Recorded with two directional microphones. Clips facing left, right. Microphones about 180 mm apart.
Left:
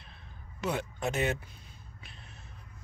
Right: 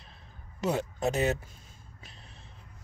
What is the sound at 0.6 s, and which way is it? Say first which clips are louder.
Speech: right 4 dB; 40° right (ahead or behind).